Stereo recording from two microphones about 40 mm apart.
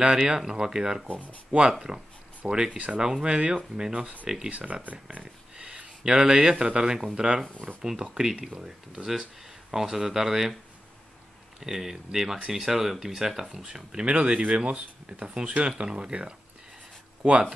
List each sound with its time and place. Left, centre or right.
0.0 s speech: centre
4.5 s speech: right
5.6 s a sound: right
6.6 s speech: centre
9.0 s speech: right
9.4 s speech: centre
11.6 s speech: centre; by 16.3 s right